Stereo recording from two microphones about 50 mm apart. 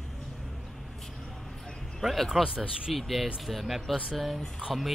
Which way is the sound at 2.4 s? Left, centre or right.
Centre.